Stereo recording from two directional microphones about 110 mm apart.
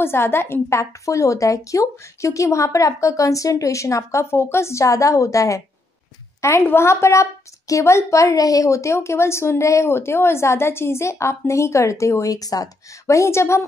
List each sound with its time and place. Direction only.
0.0 s a woman's voice: 20° left (ahead or behind)